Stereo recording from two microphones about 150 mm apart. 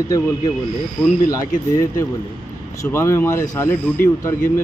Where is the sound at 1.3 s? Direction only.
20° left (ahead or behind).